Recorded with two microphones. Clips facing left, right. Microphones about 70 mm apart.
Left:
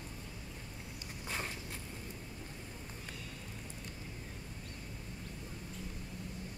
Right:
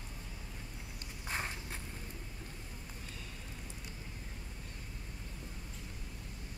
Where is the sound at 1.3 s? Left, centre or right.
Right.